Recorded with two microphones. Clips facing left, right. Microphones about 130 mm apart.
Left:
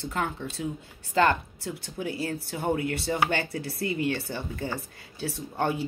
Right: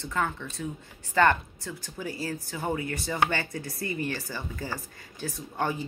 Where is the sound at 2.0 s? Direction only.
25° left (ahead or behind).